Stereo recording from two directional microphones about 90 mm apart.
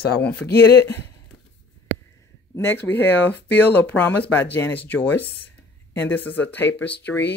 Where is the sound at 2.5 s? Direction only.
25° left (ahead or behind).